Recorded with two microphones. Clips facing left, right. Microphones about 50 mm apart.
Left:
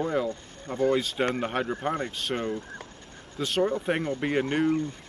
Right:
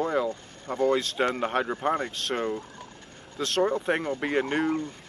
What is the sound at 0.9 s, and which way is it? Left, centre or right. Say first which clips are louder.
Speech: even; centre.